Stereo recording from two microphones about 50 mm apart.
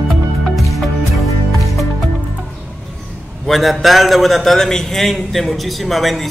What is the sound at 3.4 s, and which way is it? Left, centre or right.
A man's voice, centre.